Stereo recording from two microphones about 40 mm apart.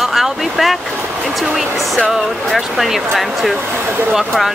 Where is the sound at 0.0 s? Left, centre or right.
Centre.